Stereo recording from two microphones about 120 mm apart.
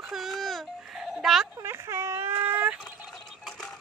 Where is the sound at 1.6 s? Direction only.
25° right (ahead or behind).